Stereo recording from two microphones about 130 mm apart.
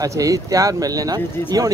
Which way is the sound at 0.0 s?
25° right (ahead or behind).